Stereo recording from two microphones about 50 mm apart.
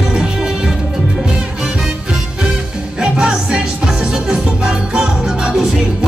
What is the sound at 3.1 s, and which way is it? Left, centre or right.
Music, centre.